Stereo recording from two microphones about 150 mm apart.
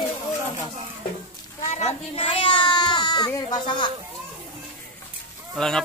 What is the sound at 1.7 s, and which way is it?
Baby cry, 50° left (ahead or behind).